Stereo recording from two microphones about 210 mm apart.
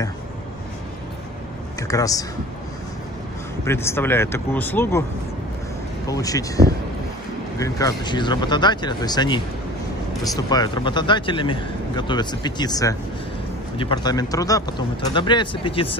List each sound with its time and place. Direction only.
1.8 s speech: 15° left (ahead or behind)
3.6 s speech: 10° left (ahead or behind)
6.0 s speech: 15° left (ahead or behind)